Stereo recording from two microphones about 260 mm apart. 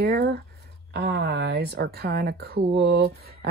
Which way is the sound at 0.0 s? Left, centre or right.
Right.